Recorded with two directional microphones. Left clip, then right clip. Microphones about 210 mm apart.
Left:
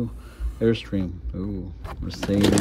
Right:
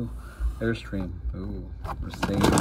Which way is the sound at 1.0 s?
Centre (ahead or behind).